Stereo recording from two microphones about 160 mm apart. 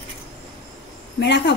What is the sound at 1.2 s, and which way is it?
Speech, 90° left.